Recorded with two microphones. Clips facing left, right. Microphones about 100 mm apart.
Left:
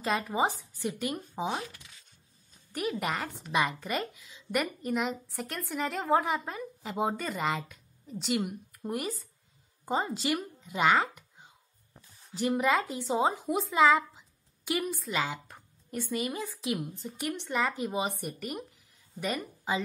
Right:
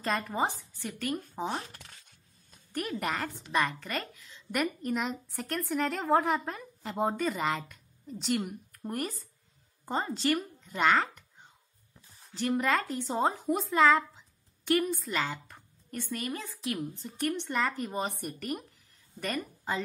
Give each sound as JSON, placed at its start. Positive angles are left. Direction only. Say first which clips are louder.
{"t": 0.0, "sound": "a woman's voice", "louder": "left 2 dB", "side_deg": 5}
{"t": 0.7, "sound": "a woman's voice", "louder": "left 1 dB", "side_deg": 15}
{"t": 1.6, "sound": "speech", "louder": "left 4 dB", "side_deg": -45}
{"t": 2.7, "sound": "a woman's voice", "louder": "left 1 dB", "side_deg": 5}
{"t": 15.4, "sound": "a woman's voice", "louder": "left 1 dB", "side_deg": 15}